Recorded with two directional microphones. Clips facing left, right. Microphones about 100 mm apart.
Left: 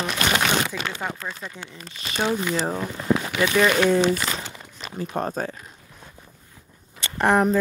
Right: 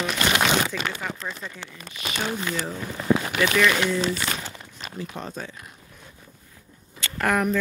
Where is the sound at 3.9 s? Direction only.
50° left (ahead or behind).